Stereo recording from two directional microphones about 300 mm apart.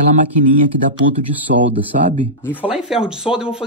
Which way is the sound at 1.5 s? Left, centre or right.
Right.